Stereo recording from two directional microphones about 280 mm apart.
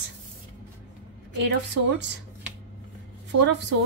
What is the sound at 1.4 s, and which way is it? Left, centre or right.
Speech, right.